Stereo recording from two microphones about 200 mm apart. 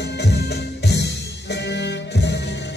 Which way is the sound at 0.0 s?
60° left (ahead or behind).